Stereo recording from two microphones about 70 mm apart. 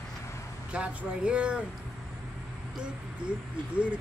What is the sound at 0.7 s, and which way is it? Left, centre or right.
Speech, centre.